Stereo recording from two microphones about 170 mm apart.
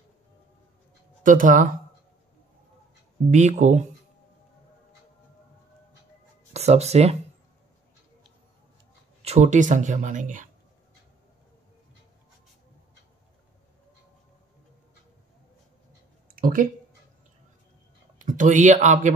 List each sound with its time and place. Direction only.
1.2 s speech: 50° right (ahead or behind)
3.3 s speech: 45° right (ahead or behind)
6.5 s speech: 40° right (ahead or behind)
9.2 s speech: 40° right (ahead or behind)
16.3 s a sound: 55° right (ahead or behind)
18.2 s speech: 50° right (ahead or behind)